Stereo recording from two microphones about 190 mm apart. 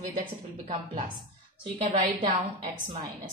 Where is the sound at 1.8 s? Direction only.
30° right (ahead or behind).